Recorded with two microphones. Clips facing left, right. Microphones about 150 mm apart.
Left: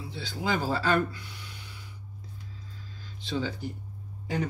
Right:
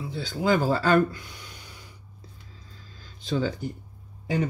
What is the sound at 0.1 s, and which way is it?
Speech, 50° right (ahead or behind).